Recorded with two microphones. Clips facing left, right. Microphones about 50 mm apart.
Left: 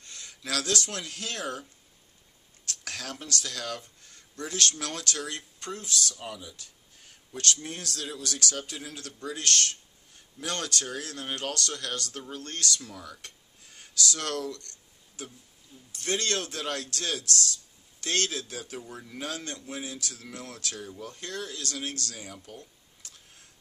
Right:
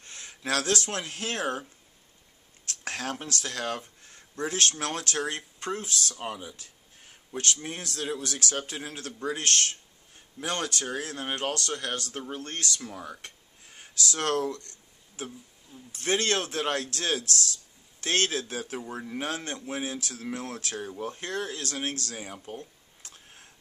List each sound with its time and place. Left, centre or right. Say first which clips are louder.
0.0 s speech: right 5 dB; right